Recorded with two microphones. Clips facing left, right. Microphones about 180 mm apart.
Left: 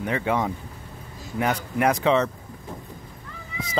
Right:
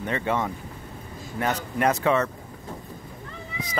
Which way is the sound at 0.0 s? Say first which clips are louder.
Left 2 dB; 10° left (ahead or behind).